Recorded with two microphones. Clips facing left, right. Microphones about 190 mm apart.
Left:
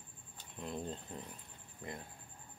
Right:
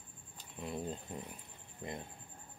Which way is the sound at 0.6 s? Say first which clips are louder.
Right 1 dB; 5° right (ahead or behind).